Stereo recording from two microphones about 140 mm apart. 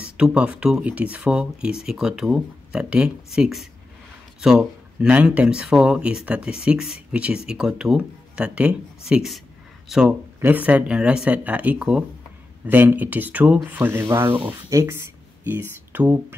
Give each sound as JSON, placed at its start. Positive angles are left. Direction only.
{"t": 0.0, "sound": "speech", "side_deg": -10}